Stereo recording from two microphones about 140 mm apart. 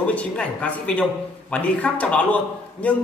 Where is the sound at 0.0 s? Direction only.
10° left (ahead or behind).